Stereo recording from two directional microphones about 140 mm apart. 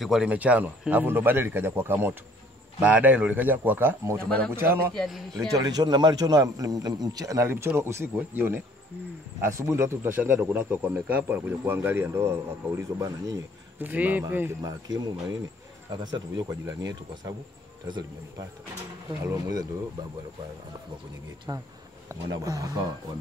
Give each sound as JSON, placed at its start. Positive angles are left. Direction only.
{"t": 0.0, "sound": "a man's voice", "side_deg": -5}
{"t": 4.9, "sound": "a man's voice", "side_deg": 0}
{"t": 5.5, "sound": "a man's voice", "side_deg": -30}
{"t": 19.2, "sound": "a man's voice", "side_deg": -25}
{"t": 21.5, "sound": "a man's voice", "side_deg": -25}